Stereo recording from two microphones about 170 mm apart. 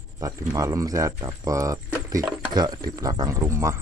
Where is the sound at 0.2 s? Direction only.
20° right (ahead or behind).